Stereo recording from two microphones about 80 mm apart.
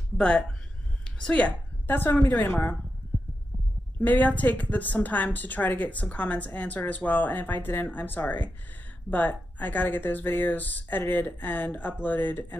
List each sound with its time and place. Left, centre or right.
0.2 s a woman's voice: centre; by 2.7 s left
4.0 s speech: left